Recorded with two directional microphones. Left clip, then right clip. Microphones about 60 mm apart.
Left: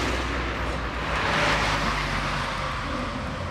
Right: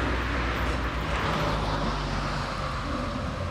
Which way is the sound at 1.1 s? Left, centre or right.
Left.